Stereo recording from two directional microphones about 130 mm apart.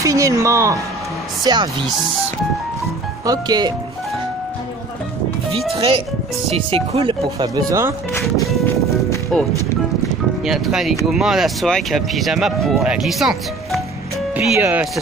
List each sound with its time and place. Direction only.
0.0 s speech: 25° right (ahead or behind)
1.4 s speech: 35° right (ahead or behind)
3.3 s speech: 30° right (ahead or behind)
5.7 s speech: 45° right (ahead or behind)
7.2 s speech: 30° right (ahead or behind)
10.4 s speech: 5° right (ahead or behind)
14.3 s speech: 15° right (ahead or behind)